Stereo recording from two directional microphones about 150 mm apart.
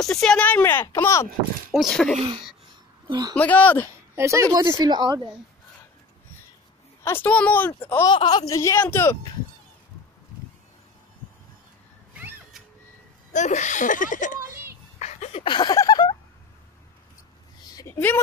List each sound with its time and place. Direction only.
0.0 s a woman's voice: 5° left (ahead or behind)
1.7 s speech: centre (ahead or behind)
3.1 s speech: 25° right (ahead or behind)
3.3 s a woman's voice: 10° left (ahead or behind)
4.1 s a woman's voice: 20° right (ahead or behind)
7.1 s a woman's voice: 10° left (ahead or behind)
8.0 s speech: 30° left (ahead or behind)
12.1 s cat: 10° right (ahead or behind)
13.3 s speech: 55° left (ahead or behind)
14.5 s a sound: 15° right (ahead or behind)
15.0 s a sound: 50° left (ahead or behind)
15.4 s a sound: 30° left (ahead or behind)
17.7 s a sound: 15° left (ahead or behind)